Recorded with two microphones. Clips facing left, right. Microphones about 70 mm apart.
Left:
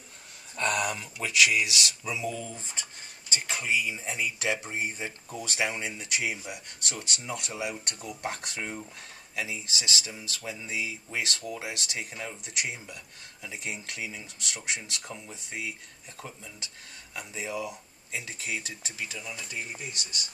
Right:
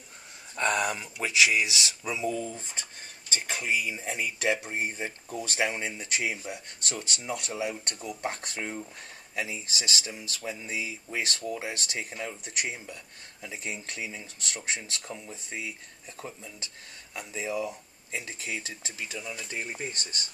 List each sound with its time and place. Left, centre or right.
0.6 s speech: centre
2.2 s speech: right
19.1 s speech: centre
19.5 s speech: right